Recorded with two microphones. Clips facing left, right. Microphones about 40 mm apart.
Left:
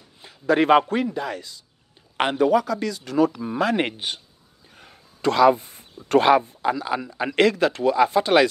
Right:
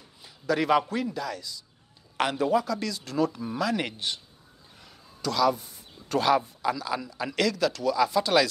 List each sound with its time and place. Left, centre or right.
0.2 s a man's voice: left
4.7 s a sound: left
6.4 s speech: left